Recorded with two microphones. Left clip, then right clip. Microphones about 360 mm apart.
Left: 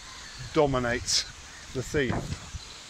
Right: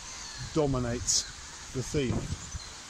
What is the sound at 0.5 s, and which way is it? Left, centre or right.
Speech, left.